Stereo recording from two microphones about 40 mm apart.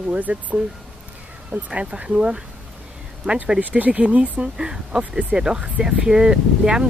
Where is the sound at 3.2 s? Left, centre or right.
Right.